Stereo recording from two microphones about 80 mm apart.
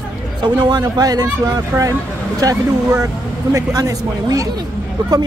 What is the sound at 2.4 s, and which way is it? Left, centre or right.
Speech, right.